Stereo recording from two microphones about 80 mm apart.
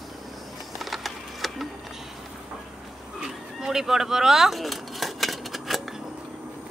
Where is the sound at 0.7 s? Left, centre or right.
Centre.